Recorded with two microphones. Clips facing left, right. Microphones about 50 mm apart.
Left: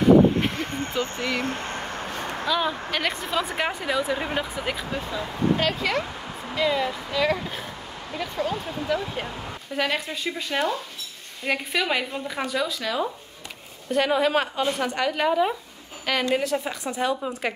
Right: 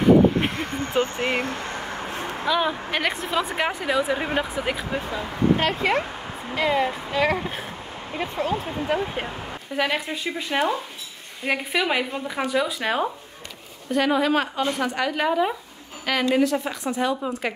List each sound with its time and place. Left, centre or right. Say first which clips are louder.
0.4 s speech: right 1 dB; right
1.5 s vehicle: even; left
2.4 s speech: right 2 dB; centre
5.1 s speech: right 2 dB; right
9.8 s speech: right 2 dB; centre
13.8 s a woman's voice: right 1 dB; centre